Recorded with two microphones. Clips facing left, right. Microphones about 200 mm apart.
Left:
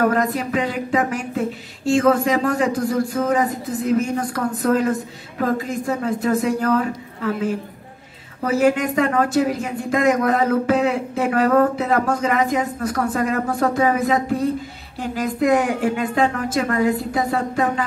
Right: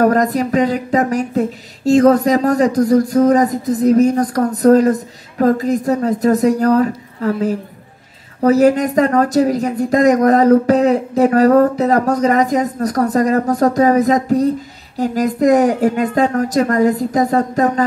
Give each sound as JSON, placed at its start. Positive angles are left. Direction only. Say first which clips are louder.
{"t": 0.0, "sound": "a woman's voice", "louder": "right 5 dB", "side_deg": -40}